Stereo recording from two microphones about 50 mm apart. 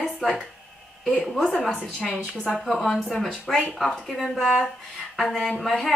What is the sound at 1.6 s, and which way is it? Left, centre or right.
Speech, centre.